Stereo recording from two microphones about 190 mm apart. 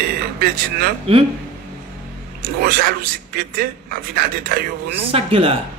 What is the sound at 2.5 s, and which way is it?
A man's voice, 50° right (ahead or behind).